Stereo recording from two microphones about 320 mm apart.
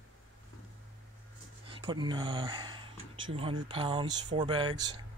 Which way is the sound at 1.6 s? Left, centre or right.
Centre.